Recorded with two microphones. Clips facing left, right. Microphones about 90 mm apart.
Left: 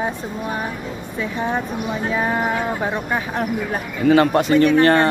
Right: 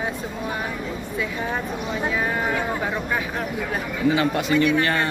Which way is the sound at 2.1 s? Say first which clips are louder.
Left 6 dB; 30° left (ahead or behind).